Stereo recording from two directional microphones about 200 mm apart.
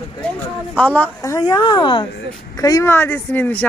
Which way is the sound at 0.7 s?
5° left (ahead or behind).